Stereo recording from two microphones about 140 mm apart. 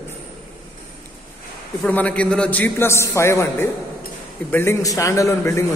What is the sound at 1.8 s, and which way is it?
A man's voice, 10° left (ahead or behind).